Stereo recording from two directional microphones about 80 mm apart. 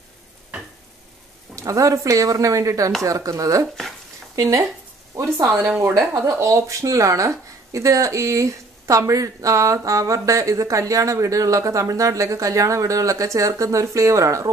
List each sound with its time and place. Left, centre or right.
1.5 s speech: right
3.6 s speech: centre
4.4 s speech: right